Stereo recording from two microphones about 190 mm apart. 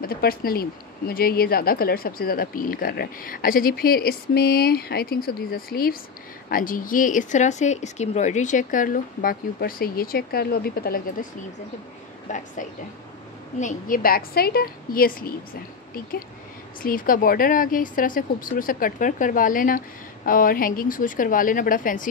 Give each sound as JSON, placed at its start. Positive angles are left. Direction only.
{"t": 0.0, "sound": "speech", "side_deg": 50}
{"t": 12.3, "sound": "a woman's voice", "side_deg": 40}
{"t": 13.6, "sound": "speech", "side_deg": 45}